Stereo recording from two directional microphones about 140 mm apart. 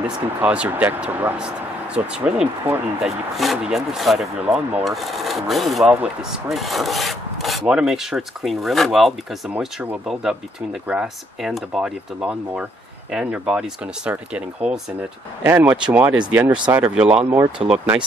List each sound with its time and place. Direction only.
0.4 s speech: 10° right (ahead or behind)
2.1 s rub: 5° right (ahead or behind)
13.1 s speech: 5° right (ahead or behind)